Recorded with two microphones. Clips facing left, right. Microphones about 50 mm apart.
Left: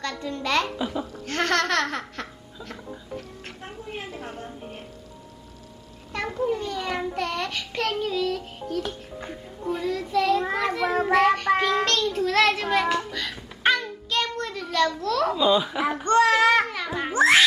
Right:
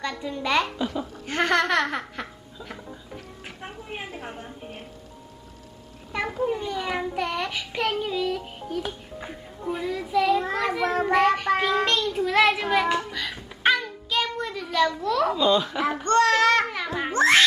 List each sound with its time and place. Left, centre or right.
0.0 s child singing: centre
0.7 s a child's voice: centre
1.2 s speech: centre
3.6 s a sound: centre
6.1 s child singing: centre
10.4 s child singing: centre
15.3 s a child's voice: centre
16.6 s a child's voice: centre
17.1 s cat: centre